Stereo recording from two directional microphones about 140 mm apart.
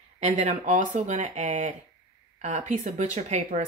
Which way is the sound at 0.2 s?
55° right (ahead or behind).